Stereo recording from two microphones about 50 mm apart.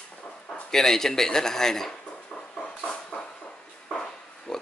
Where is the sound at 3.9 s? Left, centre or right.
Centre.